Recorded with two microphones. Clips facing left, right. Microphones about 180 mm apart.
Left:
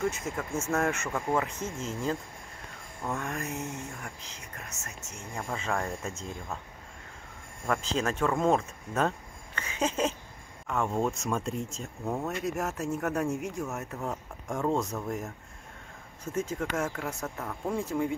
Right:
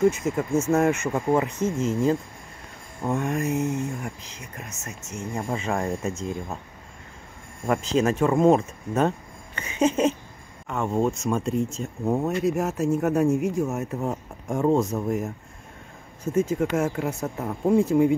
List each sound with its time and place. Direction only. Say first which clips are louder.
0.0 s speech: right 10 dB; 15° right (ahead or behind)
1.4 s speech: right 10 dB; 10° right (ahead or behind)
3.0 s speech: right 9 dB; 25° right (ahead or behind)
7.6 s speech: right 7 dB; 10° right (ahead or behind)